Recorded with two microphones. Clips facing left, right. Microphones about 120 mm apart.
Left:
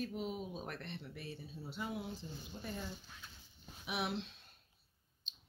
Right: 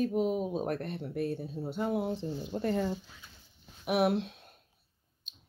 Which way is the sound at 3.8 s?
55° right (ahead or behind).